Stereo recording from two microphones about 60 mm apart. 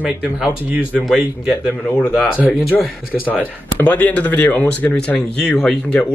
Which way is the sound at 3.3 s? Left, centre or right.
Left.